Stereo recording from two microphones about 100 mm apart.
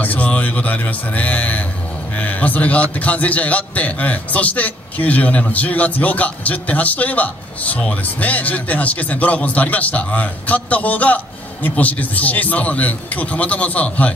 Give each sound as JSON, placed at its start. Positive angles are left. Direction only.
{"t": 0.0, "sound": "a man's voice", "side_deg": 15}